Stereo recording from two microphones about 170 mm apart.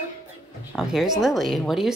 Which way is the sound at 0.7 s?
Centre (ahead or behind).